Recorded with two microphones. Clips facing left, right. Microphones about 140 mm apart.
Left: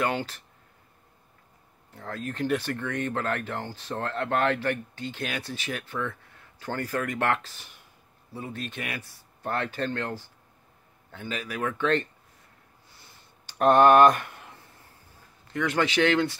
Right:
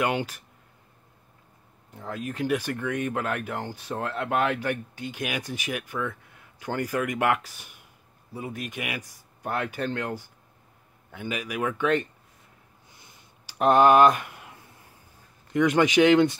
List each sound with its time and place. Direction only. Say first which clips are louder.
0.0 s speech: right 2 dB; 15° right (ahead or behind)
2.0 s speech: right 1 dB; 15° right (ahead or behind)
12.9 s a sound: even; 20° right (ahead or behind)
13.6 s speech: even; 5° right (ahead or behind)